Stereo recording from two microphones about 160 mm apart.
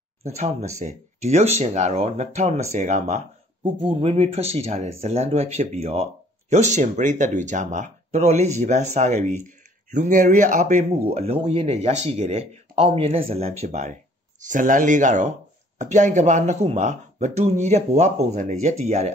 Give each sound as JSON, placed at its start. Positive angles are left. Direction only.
{"t": 0.2, "sound": "speech", "side_deg": -45}
{"t": 3.6, "sound": "speech", "side_deg": -35}